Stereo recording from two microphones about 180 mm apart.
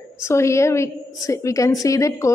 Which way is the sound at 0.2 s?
15° left (ahead or behind).